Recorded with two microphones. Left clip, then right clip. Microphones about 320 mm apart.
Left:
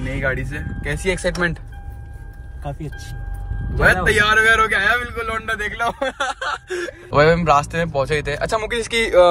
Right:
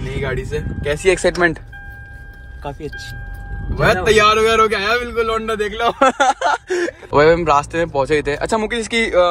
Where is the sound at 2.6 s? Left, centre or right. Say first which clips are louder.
Right 4 dB; centre.